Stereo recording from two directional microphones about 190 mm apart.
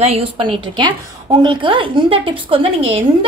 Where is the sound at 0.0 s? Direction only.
30° right (ahead or behind).